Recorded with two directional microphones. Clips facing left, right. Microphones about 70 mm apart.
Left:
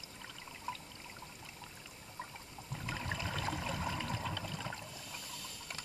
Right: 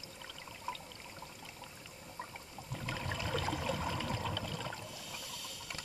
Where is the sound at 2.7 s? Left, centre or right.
Centre.